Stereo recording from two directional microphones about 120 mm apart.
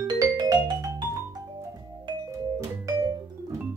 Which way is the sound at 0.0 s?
35° right (ahead or behind).